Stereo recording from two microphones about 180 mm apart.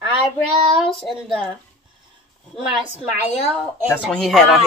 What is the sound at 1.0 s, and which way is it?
Speech, centre (ahead or behind).